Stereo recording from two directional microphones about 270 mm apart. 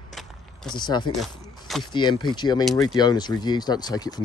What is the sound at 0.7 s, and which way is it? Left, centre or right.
Speech, centre.